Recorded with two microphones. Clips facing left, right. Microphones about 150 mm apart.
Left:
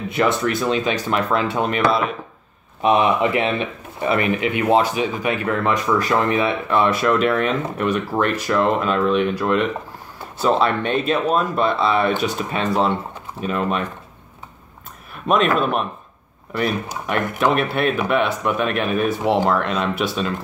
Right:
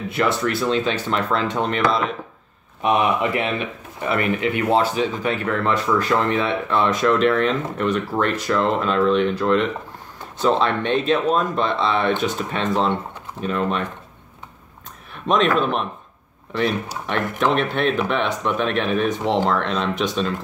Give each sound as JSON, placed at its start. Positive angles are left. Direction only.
{"t": 0.1, "sound": "speech", "side_deg": 15}
{"t": 2.8, "sound": "speech", "side_deg": 25}
{"t": 15.2, "sound": "speech", "side_deg": 5}
{"t": 16.9, "sound": "speech", "side_deg": 10}